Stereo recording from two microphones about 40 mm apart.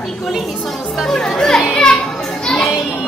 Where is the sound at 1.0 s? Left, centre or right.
Centre.